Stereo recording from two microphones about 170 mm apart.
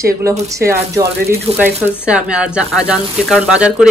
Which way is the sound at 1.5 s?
35° right (ahead or behind).